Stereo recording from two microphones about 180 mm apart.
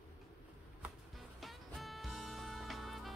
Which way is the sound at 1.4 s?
Centre (ahead or behind).